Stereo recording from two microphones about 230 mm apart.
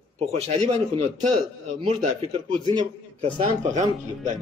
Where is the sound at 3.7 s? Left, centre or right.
Right.